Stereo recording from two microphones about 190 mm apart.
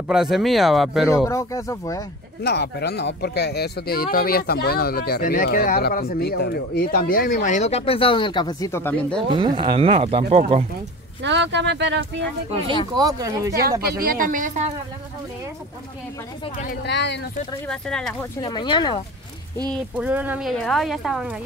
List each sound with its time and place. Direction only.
0.1 s speech: centre (ahead or behind)
1.1 s speech: 15° left (ahead or behind)
2.4 s speech: 60° left (ahead or behind)
7.4 s speech: 40° left (ahead or behind); by 9.2 s 10° left (ahead or behind)
9.3 s speech: 25° right (ahead or behind)
11.2 s speech: 70° right (ahead or behind)
12.9 s speech: 20° right (ahead or behind)
13.8 s speech: 50° right (ahead or behind)
16.8 s speech: 65° left (ahead or behind)
17.6 s speech: 5° left (ahead or behind)
18.4 s speech: 25° left (ahead or behind)
19.7 s speech: 5° right (ahead or behind)